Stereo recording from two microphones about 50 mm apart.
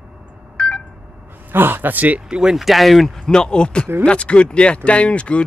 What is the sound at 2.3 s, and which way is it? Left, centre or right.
Speech, centre.